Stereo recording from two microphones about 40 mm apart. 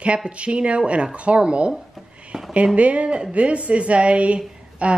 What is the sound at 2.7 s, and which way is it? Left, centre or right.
A woman's voice, right.